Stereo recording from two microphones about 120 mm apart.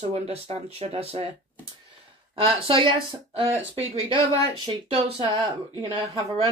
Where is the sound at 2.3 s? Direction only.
45° right (ahead or behind).